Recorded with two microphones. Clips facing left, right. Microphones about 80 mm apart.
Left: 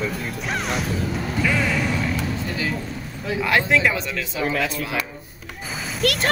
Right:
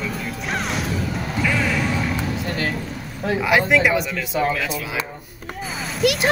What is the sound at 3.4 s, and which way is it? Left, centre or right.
Speech, centre.